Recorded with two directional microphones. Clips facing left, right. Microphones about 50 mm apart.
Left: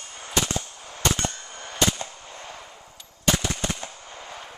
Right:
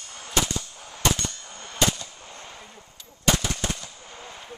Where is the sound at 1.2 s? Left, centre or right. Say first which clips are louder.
Left 4 dB; left.